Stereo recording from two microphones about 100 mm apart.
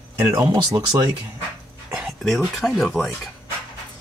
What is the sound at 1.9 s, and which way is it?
Speech, centre (ahead or behind).